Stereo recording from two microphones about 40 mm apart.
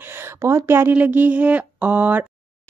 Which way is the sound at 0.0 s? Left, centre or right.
Right.